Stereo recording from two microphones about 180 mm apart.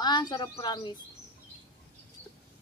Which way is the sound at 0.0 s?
25° left (ahead or behind).